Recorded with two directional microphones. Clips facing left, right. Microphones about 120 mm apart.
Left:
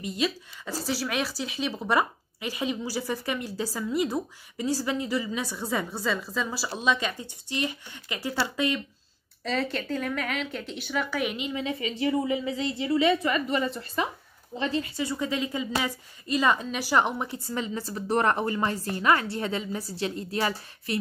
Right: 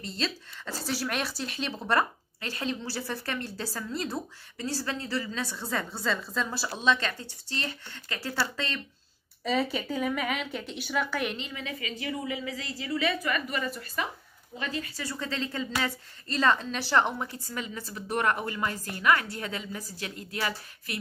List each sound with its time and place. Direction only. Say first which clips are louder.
0.0 s a woman's voice: left 5 dB; 10° left (ahead or behind)
9.4 s speech: right 1 dB; 5° right (ahead or behind)
11.5 s a woman's voice: left 6 dB; 25° left (ahead or behind)